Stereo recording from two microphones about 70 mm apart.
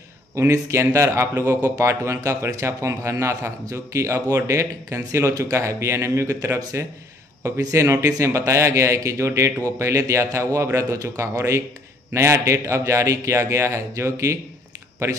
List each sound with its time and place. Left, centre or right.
0.4 s a man's voice: right